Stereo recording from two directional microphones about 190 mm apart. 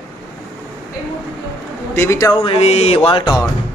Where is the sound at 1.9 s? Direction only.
15° left (ahead or behind).